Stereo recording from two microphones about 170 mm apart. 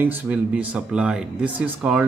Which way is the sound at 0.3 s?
5° right (ahead or behind).